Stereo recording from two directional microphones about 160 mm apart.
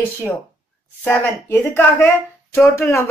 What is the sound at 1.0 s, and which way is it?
Speech, 15° left (ahead or behind).